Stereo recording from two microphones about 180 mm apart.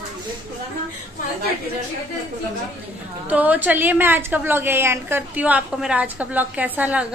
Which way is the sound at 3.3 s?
10° right (ahead or behind).